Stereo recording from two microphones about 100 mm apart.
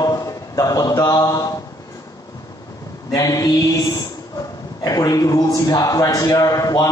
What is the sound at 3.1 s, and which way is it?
A man's voice, 40° left (ahead or behind).